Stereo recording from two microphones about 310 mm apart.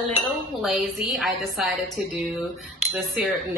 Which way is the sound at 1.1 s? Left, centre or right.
Centre.